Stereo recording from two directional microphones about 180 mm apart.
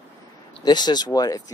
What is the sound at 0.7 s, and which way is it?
Speech, 25° left (ahead or behind).